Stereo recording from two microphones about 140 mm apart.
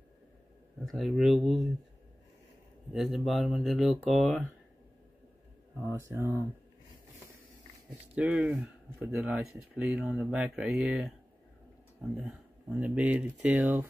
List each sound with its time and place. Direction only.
0.8 s speech: centre (ahead or behind)
2.9 s speech: centre (ahead or behind)
5.9 s speech: 15° right (ahead or behind)
8.1 s speech: 10° right (ahead or behind)
12.3 s speech: 10° right (ahead or behind)